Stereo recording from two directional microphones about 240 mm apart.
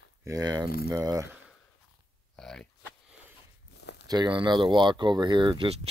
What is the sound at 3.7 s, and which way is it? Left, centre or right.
Tearing, left.